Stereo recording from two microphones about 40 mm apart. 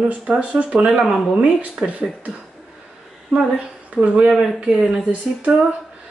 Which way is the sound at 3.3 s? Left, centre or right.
Right.